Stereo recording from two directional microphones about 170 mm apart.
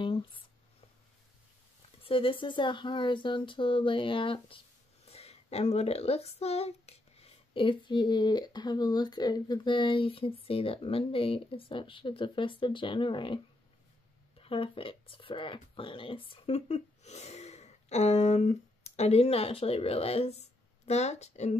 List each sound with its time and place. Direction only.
0.0 s a sound: 30° left (ahead or behind)
2.0 s speech: 30° left (ahead or behind)
14.4 s speech: 35° left (ahead or behind)